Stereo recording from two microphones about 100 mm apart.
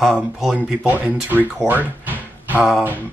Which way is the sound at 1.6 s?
20° right (ahead or behind).